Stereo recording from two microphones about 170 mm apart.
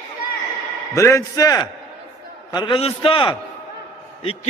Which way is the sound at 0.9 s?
15° left (ahead or behind).